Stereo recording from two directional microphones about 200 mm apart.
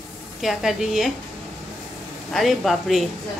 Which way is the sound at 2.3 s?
Centre (ahead or behind).